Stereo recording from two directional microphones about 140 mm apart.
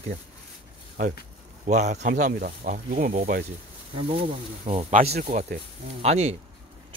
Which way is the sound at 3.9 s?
45° right (ahead or behind).